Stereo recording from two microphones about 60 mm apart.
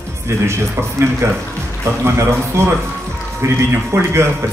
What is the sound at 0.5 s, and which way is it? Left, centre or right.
Speech, right.